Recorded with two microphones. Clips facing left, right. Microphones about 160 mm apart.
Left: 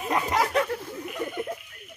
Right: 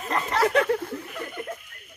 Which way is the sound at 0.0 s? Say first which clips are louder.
Right 1 dB; 10° left (ahead or behind).